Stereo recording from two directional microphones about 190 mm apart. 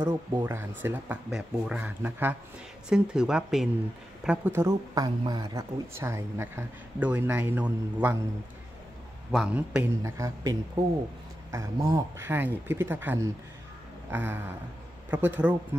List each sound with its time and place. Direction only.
0.0 s a man's voice: 10° right (ahead or behind)
9.3 s a man's voice: 5° right (ahead or behind)
10.1 s speech: 20° right (ahead or behind)